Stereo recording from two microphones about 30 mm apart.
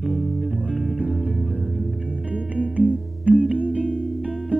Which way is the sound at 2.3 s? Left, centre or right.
Right.